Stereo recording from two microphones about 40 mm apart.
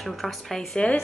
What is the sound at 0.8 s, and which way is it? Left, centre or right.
Speech, left.